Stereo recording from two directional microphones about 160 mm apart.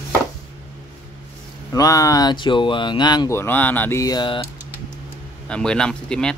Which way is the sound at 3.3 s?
10° left (ahead or behind).